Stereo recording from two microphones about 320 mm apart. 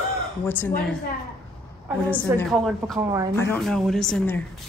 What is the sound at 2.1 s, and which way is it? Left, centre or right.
Speech, centre.